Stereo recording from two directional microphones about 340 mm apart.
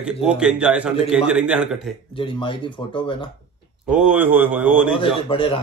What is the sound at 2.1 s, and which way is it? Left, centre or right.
Speech, centre.